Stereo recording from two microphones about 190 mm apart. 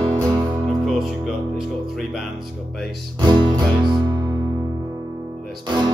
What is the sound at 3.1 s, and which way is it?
Music, 25° right (ahead or behind).